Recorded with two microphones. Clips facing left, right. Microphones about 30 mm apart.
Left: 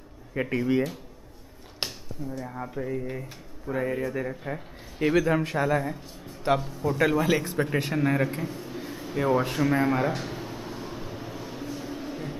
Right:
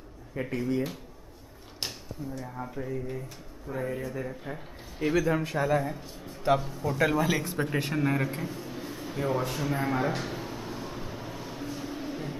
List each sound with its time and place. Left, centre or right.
0.3 s speech: left
1.9 s speech: centre
4.4 s a man's voice: centre
9.6 s air conditioning: centre